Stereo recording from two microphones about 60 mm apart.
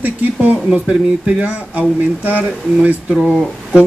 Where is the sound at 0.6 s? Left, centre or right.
Centre.